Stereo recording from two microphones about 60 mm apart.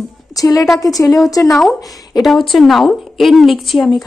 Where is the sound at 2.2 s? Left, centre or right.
Centre.